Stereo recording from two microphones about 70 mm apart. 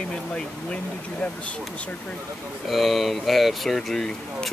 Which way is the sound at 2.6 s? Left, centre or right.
Centre.